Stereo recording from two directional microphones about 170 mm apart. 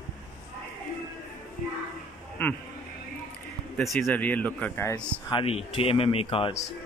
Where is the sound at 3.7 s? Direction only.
Centre (ahead or behind).